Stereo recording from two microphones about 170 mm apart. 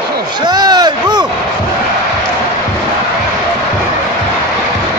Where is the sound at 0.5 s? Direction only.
25° right (ahead or behind).